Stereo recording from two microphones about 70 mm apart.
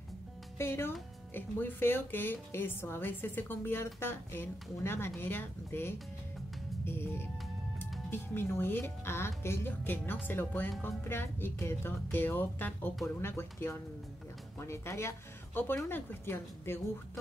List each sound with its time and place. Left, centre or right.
0.6 s speech: left
6.8 s music: left
8.1 s speech: left